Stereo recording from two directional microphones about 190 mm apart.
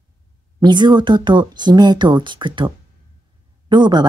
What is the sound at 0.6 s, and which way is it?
Speech, 25° right (ahead or behind).